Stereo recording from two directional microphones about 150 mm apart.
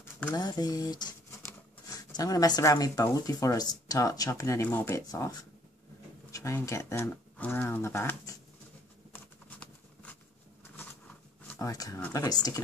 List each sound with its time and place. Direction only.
0.3 s speech: 25° left (ahead or behind)
6.3 s speech: 20° left (ahead or behind)
9.1 s a sound: 10° left (ahead or behind)
11.4 s speech: 20° left (ahead or behind)